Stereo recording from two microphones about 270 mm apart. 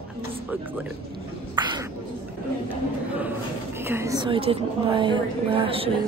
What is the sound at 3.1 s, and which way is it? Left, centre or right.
A woman's voice, centre.